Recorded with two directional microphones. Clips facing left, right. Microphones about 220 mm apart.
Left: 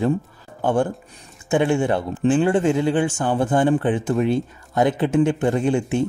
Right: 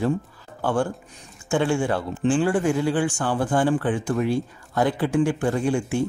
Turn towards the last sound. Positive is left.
turn(degrees=20)  # may be behind; listen again after turning